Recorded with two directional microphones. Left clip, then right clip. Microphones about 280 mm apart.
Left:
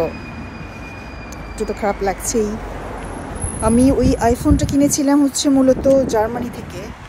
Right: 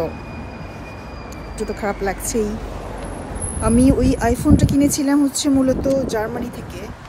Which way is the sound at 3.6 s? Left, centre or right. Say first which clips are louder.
Left 2 dB; centre.